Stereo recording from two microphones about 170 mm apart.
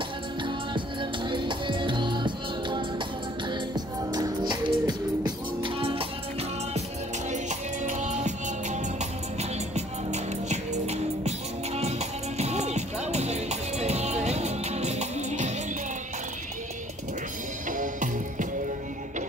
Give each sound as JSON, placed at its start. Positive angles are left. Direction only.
{"t": 0.4, "sound": "music", "side_deg": -30}
{"t": 7.2, "sound": "music", "side_deg": -45}
{"t": 17.6, "sound": "music", "side_deg": -50}